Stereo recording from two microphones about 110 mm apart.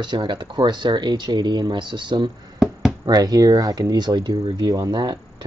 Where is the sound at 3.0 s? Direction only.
35° right (ahead or behind).